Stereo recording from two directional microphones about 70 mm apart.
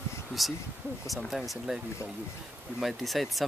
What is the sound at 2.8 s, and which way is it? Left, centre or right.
Speech, centre.